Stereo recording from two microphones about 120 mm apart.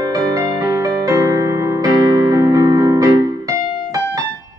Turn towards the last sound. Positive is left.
turn(degrees=-30)  # may be behind; listen again after turning